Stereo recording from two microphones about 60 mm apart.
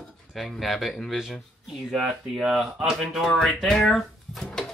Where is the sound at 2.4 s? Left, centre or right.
Centre.